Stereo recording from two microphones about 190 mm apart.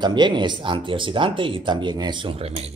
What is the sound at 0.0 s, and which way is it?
Speech, 25° right (ahead or behind).